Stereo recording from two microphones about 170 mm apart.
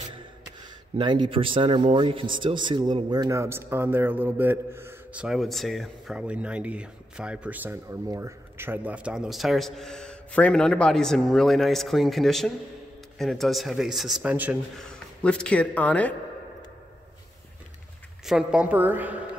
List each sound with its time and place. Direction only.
0.9 s a man's voice: 30° right (ahead or behind); by 14.6 s 10° right (ahead or behind)
14.8 s speech: 5° left (ahead or behind)
18.2 s a woman's voice: 5° right (ahead or behind)